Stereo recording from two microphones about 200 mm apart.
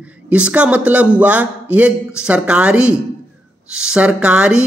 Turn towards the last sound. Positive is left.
turn(degrees=-5)  # may be behind; listen again after turning